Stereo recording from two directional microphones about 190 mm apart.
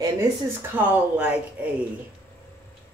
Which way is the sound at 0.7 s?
5° right (ahead or behind).